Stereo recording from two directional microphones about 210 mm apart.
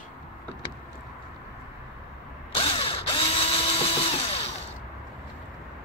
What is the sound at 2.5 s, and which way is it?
Drill, 25° left (ahead or behind).